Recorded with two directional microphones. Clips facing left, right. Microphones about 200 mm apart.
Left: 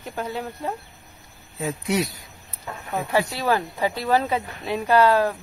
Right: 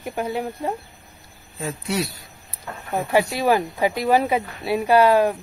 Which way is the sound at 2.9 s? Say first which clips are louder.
Right 3 dB; 15° right (ahead or behind).